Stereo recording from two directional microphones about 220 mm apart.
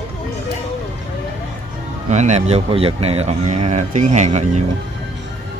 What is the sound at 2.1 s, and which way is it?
Speech, 30° right (ahead or behind).